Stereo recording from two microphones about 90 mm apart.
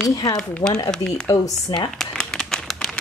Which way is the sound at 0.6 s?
55° left (ahead or behind).